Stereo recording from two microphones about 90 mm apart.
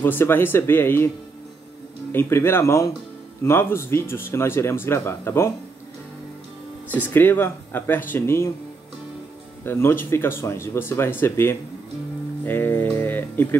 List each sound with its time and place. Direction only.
0.0 s speech: 20° left (ahead or behind)
2.1 s speech: 30° left (ahead or behind)
6.9 s speech: 20° left (ahead or behind)
9.7 s speech: 25° left (ahead or behind)